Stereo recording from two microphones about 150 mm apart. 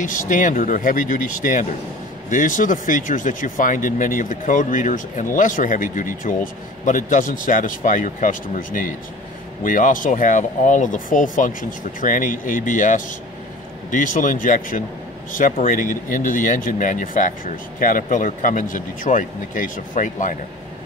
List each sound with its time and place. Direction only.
0.0 s speech: 60° left (ahead or behind)